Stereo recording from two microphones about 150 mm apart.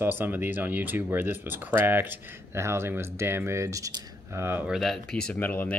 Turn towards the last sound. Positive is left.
turn(degrees=10)  # may be behind; listen again after turning